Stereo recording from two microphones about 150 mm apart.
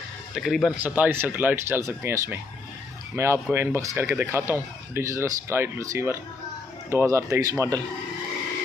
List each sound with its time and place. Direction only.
0.3 s speech: centre (ahead or behind)
0.8 s speech: 10° right (ahead or behind)